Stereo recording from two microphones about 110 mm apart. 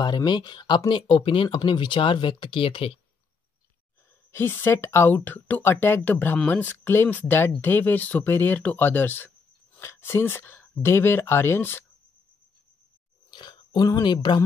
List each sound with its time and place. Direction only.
0.0 s speech: 40° left (ahead or behind)
4.3 s speech: 20° left (ahead or behind)
13.3 s a sound: 40° left (ahead or behind)